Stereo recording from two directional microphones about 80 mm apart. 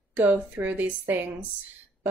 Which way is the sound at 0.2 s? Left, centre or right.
Right.